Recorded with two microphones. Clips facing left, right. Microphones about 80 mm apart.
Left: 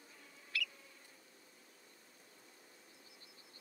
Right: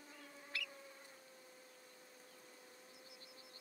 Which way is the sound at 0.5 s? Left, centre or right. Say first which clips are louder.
Left 5 dB; right.